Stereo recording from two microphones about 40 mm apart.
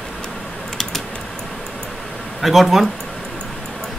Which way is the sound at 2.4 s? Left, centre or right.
Centre.